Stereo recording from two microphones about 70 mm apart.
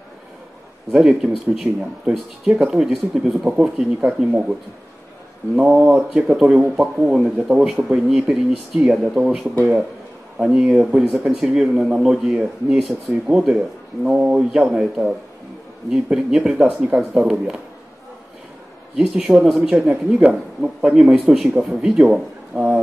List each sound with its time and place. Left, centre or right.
0.9 s speech: centre
5.8 s speech: right
18.9 s speech: centre